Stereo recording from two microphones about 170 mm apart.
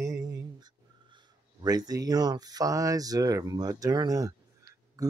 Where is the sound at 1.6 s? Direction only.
20° right (ahead or behind).